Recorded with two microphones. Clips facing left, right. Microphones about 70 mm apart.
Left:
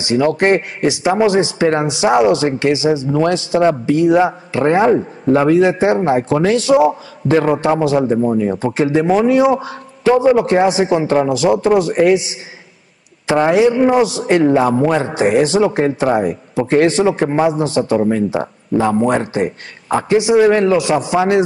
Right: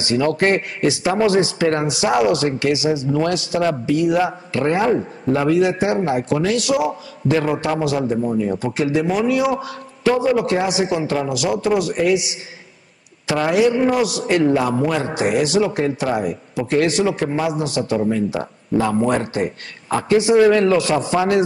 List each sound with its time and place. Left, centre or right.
0.0 s a man's voice: centre
18.7 s speech: centre
19.0 s a man's voice: left